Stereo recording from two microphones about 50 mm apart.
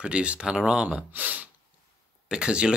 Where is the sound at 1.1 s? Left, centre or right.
Right.